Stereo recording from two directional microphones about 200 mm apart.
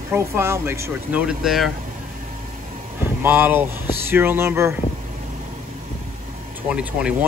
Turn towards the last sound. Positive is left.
turn(degrees=-5)  # may be behind; listen again after turning